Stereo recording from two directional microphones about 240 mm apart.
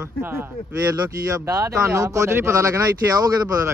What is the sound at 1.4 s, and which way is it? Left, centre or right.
Speech, centre.